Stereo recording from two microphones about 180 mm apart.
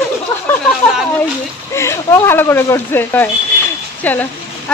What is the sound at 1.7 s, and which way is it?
A woman's voice, 15° left (ahead or behind).